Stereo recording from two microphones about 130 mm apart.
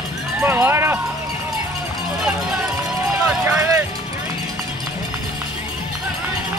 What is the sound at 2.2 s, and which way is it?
Run, 5° right (ahead or behind).